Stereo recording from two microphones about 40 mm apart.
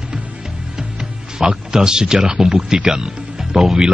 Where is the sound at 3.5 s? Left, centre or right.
Centre.